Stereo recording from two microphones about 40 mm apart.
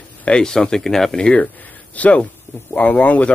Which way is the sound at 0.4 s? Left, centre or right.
Centre.